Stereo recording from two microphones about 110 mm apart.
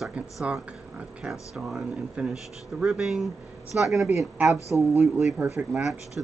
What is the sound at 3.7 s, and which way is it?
Speech, 15° right (ahead or behind).